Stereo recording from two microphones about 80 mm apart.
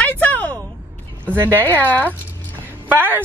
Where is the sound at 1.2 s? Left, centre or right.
Right.